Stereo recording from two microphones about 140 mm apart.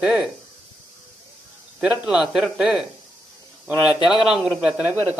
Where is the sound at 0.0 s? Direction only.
5° right (ahead or behind).